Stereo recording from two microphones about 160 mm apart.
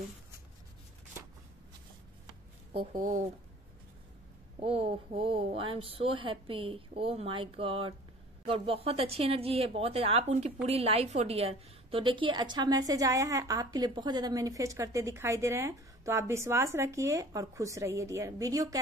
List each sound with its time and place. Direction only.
2.9 s speech: 60° right (ahead or behind)
4.6 s a woman's voice: 40° right (ahead or behind); by 18.8 s 20° right (ahead or behind)